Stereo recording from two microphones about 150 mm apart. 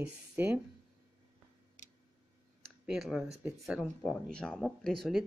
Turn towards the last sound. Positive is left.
turn(degrees=0)  # may be behind; listen again after turning